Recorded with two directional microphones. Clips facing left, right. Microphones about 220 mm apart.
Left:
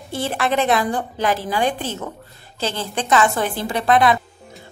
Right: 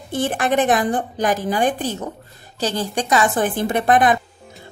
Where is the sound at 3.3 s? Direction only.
50° right (ahead or behind).